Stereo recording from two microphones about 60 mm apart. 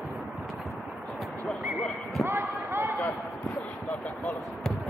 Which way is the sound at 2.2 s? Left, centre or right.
Right.